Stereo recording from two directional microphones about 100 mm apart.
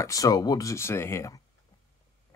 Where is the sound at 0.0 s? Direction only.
35° left (ahead or behind).